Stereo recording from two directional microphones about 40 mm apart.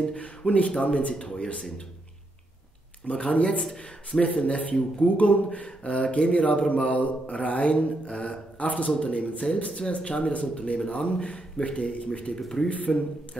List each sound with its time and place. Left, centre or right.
0.0 s speech: left
3.1 s speech: left
12.4 s speech: centre
12.6 s speech: left